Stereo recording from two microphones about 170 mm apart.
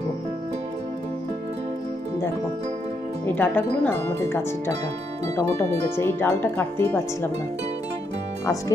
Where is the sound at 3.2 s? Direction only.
10° left (ahead or behind).